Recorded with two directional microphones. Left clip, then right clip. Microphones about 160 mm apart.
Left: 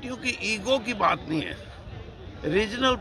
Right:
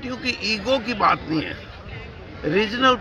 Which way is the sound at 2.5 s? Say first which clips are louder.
Right 4 dB; 40° left (ahead or behind).